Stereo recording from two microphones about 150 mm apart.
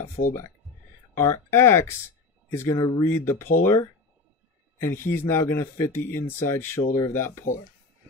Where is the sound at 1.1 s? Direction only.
20° left (ahead or behind).